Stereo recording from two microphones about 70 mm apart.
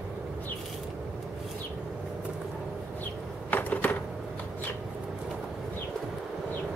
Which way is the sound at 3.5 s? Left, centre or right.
Left.